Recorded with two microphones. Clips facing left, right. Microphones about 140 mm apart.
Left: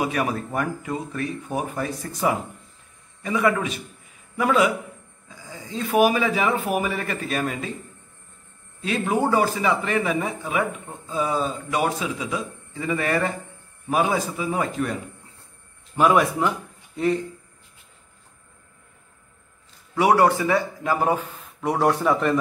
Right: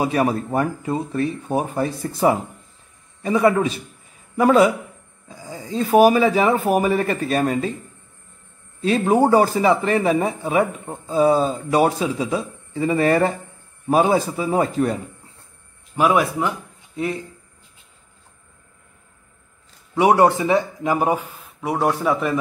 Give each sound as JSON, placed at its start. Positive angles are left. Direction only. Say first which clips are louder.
{"t": 0.0, "sound": "speech", "louder": "right 5 dB", "side_deg": -30}
{"t": 8.8, "sound": "speech", "louder": "right 6 dB", "side_deg": -35}
{"t": 16.0, "sound": "speech", "louder": "even", "side_deg": -5}
{"t": 20.0, "sound": "a man's voice", "louder": "right 3 dB", "side_deg": -20}